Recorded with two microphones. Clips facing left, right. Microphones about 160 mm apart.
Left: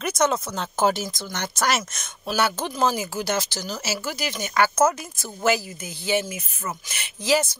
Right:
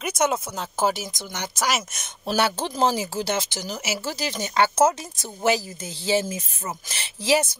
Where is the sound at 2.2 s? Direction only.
30° right (ahead or behind).